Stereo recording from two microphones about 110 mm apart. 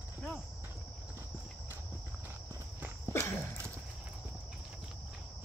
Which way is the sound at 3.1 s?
20° left (ahead or behind).